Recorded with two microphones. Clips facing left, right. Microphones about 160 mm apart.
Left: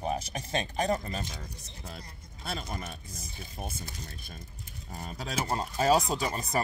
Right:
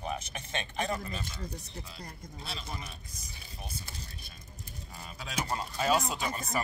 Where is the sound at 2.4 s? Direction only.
50° left (ahead or behind).